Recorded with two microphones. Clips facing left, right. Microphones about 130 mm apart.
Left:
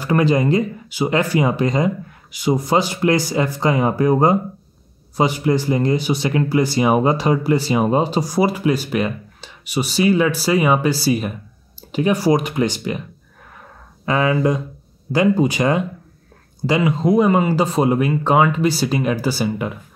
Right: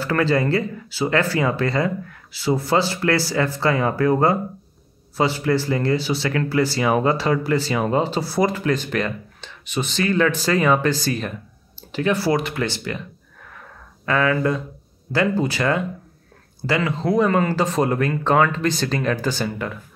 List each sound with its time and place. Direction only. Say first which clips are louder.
0.0 s speech: left 3 dB; 15° left (ahead or behind)
14.0 s speech: left 2 dB; 20° left (ahead or behind)